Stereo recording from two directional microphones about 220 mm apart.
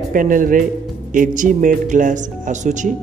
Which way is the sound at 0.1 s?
40° right (ahead or behind).